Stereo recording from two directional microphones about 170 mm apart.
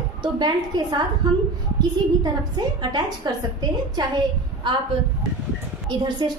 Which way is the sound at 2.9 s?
25° right (ahead or behind).